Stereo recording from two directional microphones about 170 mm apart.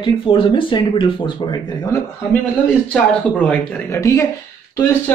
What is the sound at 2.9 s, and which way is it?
Speech, 10° left (ahead or behind).